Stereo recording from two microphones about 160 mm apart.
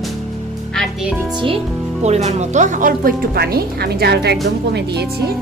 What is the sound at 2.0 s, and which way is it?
Speech, 45° right (ahead or behind).